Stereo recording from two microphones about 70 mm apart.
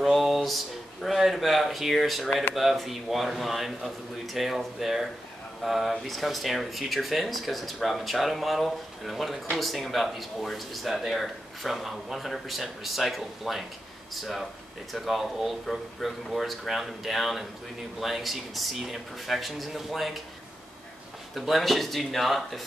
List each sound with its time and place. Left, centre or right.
0.0 s a sound: centre
1.0 s speech: centre
21.4 s speech: centre